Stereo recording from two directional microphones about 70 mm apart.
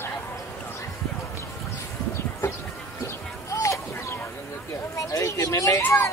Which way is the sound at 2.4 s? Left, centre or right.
Left.